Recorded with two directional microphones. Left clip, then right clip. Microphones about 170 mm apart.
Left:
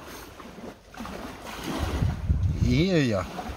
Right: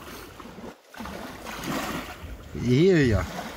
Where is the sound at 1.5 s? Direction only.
80° right.